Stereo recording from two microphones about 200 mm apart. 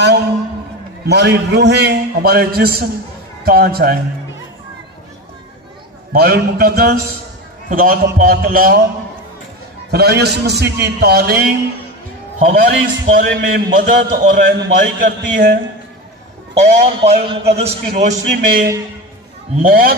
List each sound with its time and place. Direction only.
1.0 s a man's voice: 55° right (ahead or behind)
6.1 s a man's voice: 50° right (ahead or behind)
9.8 s a man's voice: 55° right (ahead or behind)
12.4 s a man's voice: 40° right (ahead or behind)
16.5 s a man's voice: 30° right (ahead or behind); by 20.0 s 45° right (ahead or behind)